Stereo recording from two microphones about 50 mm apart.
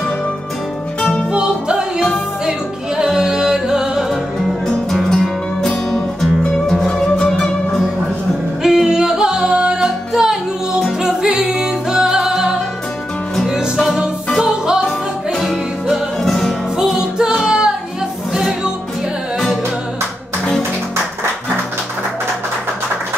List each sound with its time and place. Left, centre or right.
1.3 s music: centre
4.6 s music: centre
8.6 s music: centre
15.3 s music: centre
16.7 s music: centre